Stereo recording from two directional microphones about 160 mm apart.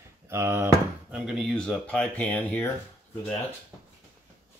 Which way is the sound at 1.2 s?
Centre (ahead or behind).